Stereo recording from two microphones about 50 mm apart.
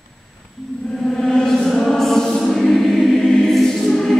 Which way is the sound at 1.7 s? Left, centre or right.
Centre.